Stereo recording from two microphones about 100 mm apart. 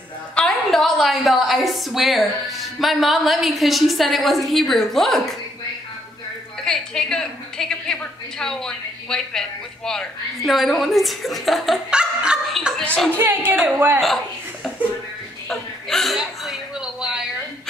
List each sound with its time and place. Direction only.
0.4 s a woman's voice: 5° left (ahead or behind)
6.6 s a woman's voice: 5° left (ahead or behind)
12.5 s chuckle: centre (ahead or behind)
12.8 s speech: 10° left (ahead or behind)
13.2 s speech: 20° right (ahead or behind)
13.9 s speech: centre (ahead or behind)
15.4 s chuckle: 5° left (ahead or behind)